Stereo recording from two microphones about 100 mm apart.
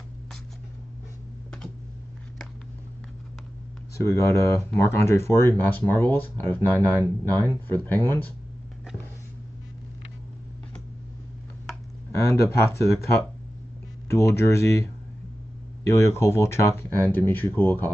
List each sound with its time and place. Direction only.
4.0 s speech: 30° left (ahead or behind)
12.2 s speech: 30° left (ahead or behind)
14.0 s speech: 30° left (ahead or behind)